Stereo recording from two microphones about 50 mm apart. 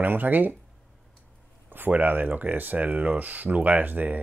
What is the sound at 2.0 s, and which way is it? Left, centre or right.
Speech, right.